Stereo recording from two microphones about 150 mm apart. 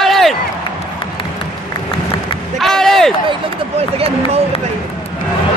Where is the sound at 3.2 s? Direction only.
40° right (ahead or behind).